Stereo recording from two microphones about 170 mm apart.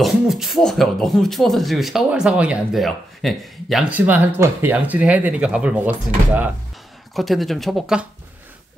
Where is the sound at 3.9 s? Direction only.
10° right (ahead or behind).